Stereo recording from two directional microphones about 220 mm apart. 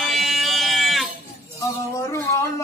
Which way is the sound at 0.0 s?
Centre (ahead or behind).